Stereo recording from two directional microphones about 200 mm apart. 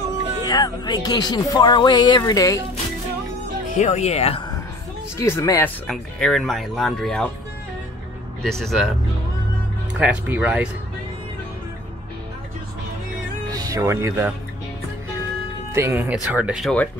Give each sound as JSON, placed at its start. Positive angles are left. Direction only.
{"t": 0.5, "sound": "speech", "side_deg": 20}
{"t": 3.7, "sound": "speech", "side_deg": 35}
{"t": 5.1, "sound": "speech", "side_deg": 10}
{"t": 8.4, "sound": "speech", "side_deg": 0}
{"t": 9.9, "sound": "speech", "side_deg": -5}
{"t": 13.5, "sound": "speech", "side_deg": -15}
{"t": 15.7, "sound": "speech", "side_deg": -10}